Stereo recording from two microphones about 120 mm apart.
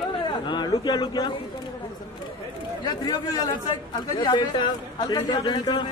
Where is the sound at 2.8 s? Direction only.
35° left (ahead or behind).